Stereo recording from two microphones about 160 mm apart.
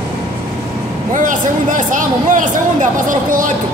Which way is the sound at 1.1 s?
55° right (ahead or behind).